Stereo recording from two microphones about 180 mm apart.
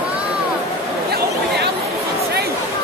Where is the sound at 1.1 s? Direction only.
65° right (ahead or behind).